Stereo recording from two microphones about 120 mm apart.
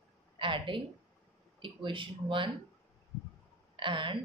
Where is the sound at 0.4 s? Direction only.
45° right (ahead or behind).